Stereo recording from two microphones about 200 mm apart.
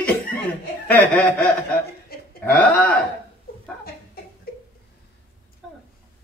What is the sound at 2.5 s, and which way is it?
Chuckle, 5° left (ahead or behind).